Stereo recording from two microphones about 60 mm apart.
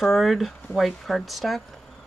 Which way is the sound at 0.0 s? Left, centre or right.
Centre.